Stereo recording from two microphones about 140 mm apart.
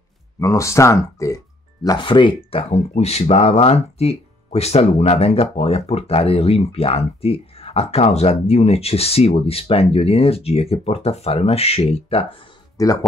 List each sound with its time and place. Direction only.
0.4 s speech: 20° left (ahead or behind)
1.8 s speech: 35° left (ahead or behind)
2.7 s speech: 50° left (ahead or behind)
12.7 s speech: 25° left (ahead or behind)